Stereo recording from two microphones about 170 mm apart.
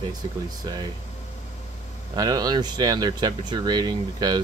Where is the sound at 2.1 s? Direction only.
20° right (ahead or behind).